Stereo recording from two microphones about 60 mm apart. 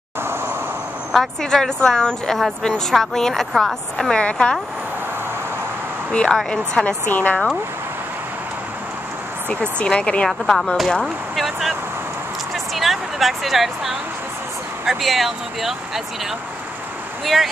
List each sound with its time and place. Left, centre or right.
1.1 s a woman's voice: centre
4.1 s a woman's voice: centre
6.5 s a woman's voice: centre
7.1 s speech: left
9.5 s speech: centre
10.2 s a woman's voice: centre
12.7 s a sound: centre
14.9 s speech: centre
17.2 s speech: centre